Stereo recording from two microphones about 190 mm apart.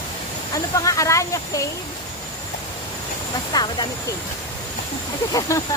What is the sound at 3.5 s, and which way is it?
Speech, 20° left (ahead or behind).